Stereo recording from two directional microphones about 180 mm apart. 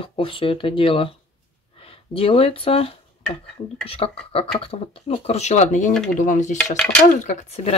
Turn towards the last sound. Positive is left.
turn(degrees=35)  # may be behind; listen again after turning